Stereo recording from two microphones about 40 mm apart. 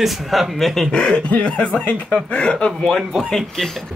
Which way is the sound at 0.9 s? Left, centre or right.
Left.